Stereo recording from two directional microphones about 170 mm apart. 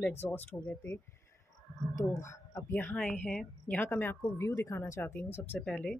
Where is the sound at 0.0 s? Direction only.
10° left (ahead or behind).